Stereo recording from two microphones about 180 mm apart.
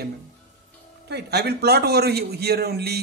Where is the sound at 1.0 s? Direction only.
65° right (ahead or behind).